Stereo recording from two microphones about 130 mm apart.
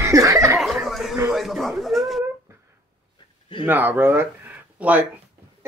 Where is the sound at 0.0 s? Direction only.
25° right (ahead or behind).